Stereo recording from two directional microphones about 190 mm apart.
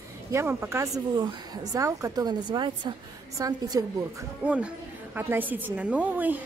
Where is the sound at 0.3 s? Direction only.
15° right (ahead or behind).